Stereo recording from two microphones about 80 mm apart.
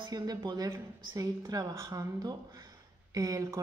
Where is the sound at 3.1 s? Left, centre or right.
Right.